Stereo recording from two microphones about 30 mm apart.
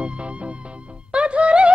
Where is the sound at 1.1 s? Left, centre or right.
Right.